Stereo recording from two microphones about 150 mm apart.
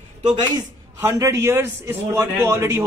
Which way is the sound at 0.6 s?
20° right (ahead or behind).